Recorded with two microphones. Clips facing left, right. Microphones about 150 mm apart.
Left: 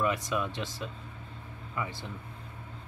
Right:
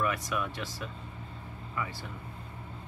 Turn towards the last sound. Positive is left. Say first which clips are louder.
# left 1 dB
turn(degrees=20)  # may be behind; listen again after turning